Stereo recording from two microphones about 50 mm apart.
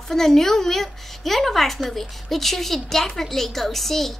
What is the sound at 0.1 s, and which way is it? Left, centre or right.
A woman's voice, centre.